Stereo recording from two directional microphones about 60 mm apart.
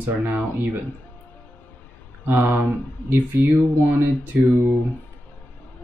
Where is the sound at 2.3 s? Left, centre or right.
Right.